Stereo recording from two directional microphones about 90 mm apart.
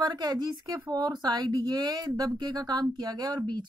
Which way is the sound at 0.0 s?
50° right (ahead or behind).